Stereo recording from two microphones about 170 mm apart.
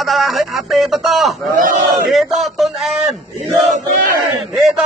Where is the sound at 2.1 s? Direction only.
Centre (ahead or behind).